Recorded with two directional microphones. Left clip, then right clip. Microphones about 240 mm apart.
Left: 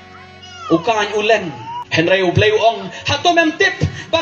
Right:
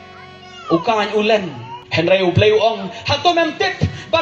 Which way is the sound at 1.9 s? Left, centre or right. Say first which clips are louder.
Even; left.